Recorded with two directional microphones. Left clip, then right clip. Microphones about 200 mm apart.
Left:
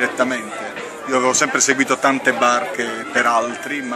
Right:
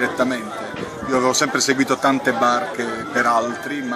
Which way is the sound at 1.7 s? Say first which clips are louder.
Left 1 dB; 5° left (ahead or behind).